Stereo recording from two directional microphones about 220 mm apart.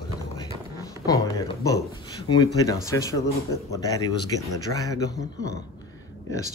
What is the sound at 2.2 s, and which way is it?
Speech, 15° left (ahead or behind).